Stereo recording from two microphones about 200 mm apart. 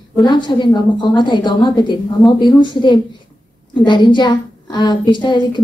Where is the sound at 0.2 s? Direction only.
20° left (ahead or behind).